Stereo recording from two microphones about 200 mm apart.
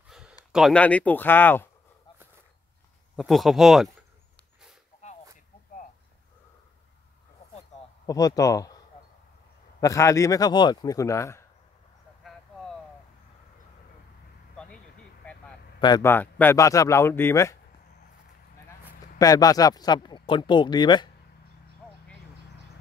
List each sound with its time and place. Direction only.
0.1 s a sound: 5° right (ahead or behind)
0.5 s speech: centre (ahead or behind)
3.2 s speech: centre (ahead or behind)
8.1 s speech: 15° left (ahead or behind)
9.8 s speech: 15° left (ahead or behind)
12.2 s a sound: centre (ahead or behind)
15.2 s a sound: 5° left (ahead or behind)
15.8 s a man's voice: 20° left (ahead or behind)
16.1 s speech: 10° left (ahead or behind)
19.1 s speech: 20° left (ahead or behind)